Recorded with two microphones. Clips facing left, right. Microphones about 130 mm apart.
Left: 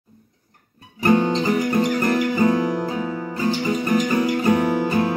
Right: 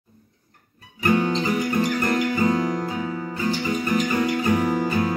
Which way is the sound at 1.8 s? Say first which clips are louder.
Left 3 dB; 30° left (ahead or behind).